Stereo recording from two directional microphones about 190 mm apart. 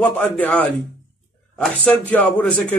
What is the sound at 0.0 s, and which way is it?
Speech, 10° left (ahead or behind).